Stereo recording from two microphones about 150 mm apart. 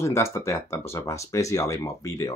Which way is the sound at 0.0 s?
20° left (ahead or behind).